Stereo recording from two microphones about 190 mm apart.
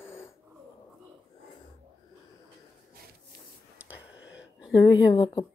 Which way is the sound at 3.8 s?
5° right (ahead or behind).